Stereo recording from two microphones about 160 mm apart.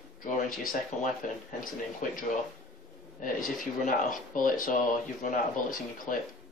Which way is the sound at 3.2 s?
55° left (ahead or behind).